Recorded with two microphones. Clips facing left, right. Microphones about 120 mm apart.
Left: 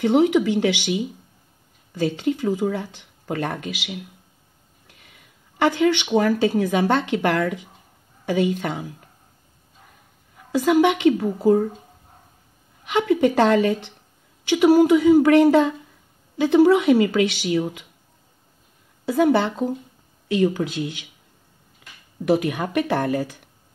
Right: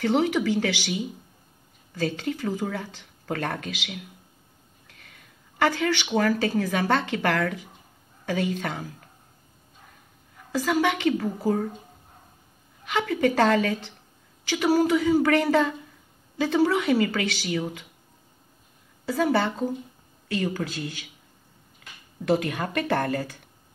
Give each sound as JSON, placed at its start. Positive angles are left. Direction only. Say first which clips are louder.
{"t": 0.0, "sound": "speech", "louder": "left 5 dB", "side_deg": 15}
{"t": 10.5, "sound": "speech", "louder": "left 6 dB", "side_deg": 15}
{"t": 12.8, "sound": "speech", "louder": "left 5 dB", "side_deg": 15}
{"t": 19.0, "sound": "speech", "louder": "left 5 dB", "side_deg": 15}
{"t": 22.2, "sound": "speech", "louder": "left 4 dB", "side_deg": 10}